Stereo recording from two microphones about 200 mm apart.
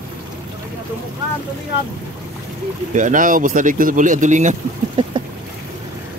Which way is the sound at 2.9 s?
40° right (ahead or behind).